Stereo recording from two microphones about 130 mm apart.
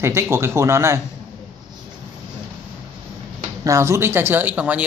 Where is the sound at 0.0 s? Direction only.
20° right (ahead or behind).